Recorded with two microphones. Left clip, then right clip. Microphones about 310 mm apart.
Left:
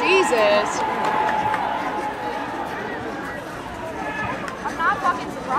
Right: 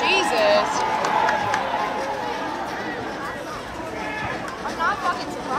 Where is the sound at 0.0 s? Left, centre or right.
Left.